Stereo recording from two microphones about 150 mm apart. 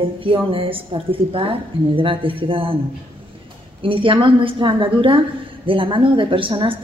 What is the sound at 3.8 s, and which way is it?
A woman's voice, 35° right (ahead or behind).